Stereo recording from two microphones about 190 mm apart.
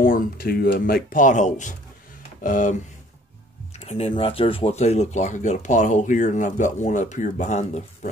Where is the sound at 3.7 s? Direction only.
35° left (ahead or behind).